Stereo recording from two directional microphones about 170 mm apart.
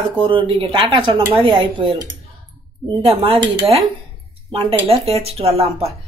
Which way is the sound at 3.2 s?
30° right (ahead or behind).